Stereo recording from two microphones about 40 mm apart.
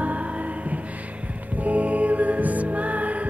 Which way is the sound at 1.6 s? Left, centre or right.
Right.